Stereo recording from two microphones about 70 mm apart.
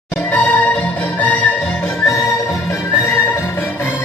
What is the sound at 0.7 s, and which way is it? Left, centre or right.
Music, left.